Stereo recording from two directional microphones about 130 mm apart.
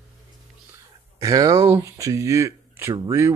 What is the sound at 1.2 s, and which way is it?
Speech, 25° right (ahead or behind).